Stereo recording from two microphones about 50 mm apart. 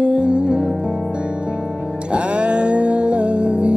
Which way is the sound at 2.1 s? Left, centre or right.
Right.